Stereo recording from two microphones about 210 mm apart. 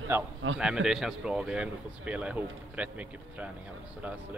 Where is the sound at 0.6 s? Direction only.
5° right (ahead or behind).